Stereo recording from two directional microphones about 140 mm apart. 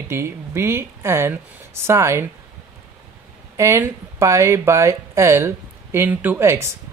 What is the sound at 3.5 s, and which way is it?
Speech, 20° right (ahead or behind).